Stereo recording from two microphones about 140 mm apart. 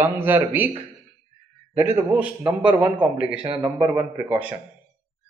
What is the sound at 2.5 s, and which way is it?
A man's voice, 35° right (ahead or behind).